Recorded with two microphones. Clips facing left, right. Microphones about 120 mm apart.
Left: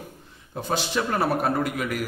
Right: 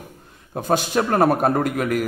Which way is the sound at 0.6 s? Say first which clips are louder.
Right 6 dB; 50° right (ahead or behind).